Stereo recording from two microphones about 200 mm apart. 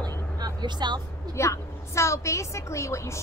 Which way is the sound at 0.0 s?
20° right (ahead or behind).